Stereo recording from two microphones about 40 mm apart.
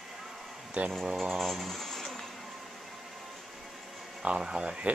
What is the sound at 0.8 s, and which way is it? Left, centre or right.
Speech, right.